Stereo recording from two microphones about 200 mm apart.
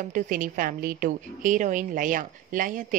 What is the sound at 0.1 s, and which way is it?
A woman's voice, 45° right (ahead or behind).